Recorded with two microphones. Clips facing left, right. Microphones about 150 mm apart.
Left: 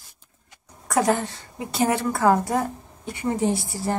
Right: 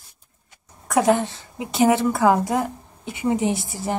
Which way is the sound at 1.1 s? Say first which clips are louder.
Right 4 dB; 20° right (ahead or behind).